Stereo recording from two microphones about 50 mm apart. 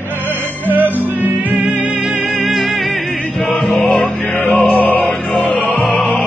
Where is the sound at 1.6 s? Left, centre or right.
Right.